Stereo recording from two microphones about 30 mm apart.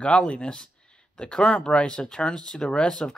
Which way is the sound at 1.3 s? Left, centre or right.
Left.